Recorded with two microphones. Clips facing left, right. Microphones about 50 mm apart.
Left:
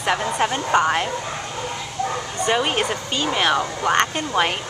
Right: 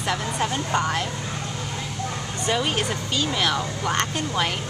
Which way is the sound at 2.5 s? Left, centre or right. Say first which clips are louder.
Left 3 dB; left.